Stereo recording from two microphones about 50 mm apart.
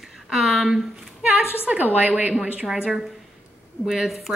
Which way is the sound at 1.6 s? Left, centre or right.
Right.